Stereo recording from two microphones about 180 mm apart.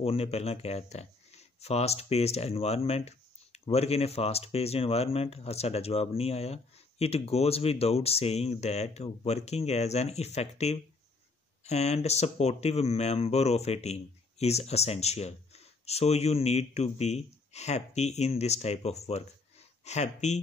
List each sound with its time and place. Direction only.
0.0 s speech: 35° left (ahead or behind)